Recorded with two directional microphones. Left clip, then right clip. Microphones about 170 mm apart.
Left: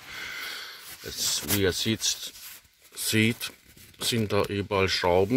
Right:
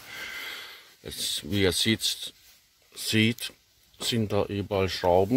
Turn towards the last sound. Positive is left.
turn(degrees=-5)  # may be behind; listen again after turning